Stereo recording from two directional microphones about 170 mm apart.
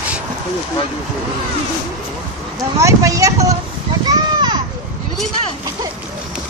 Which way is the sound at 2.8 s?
20° right (ahead or behind).